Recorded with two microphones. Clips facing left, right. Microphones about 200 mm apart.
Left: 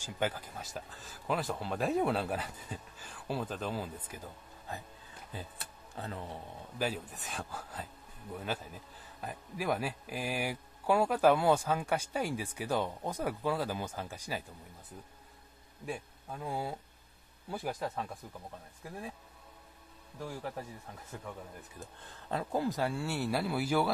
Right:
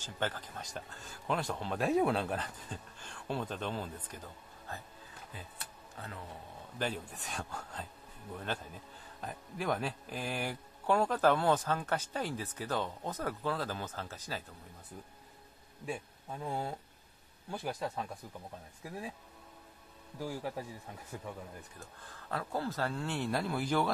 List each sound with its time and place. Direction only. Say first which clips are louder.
0.0 s speech: left 3 dB; 10° left (ahead or behind)
5.3 s speech: left 6 dB; 30° left (ahead or behind)
6.8 s speech: left 2 dB; 5° left (ahead or behind)
15.8 s speech: even; centre (ahead or behind)
20.2 s a man's voice: right 2 dB; 5° right (ahead or behind)
21.7 s speech: left 2 dB; 20° left (ahead or behind)